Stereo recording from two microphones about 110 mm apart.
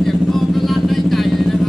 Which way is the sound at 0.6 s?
Centre (ahead or behind).